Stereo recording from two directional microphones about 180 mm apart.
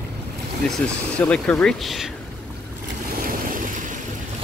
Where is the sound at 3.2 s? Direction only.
50° right (ahead or behind).